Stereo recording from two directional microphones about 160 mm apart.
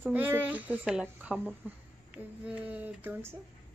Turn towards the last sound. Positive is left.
turn(degrees=-10)  # may be behind; listen again after turning